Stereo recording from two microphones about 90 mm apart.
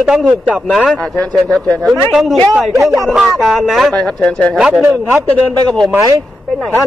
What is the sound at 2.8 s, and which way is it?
Speech, 40° right (ahead or behind).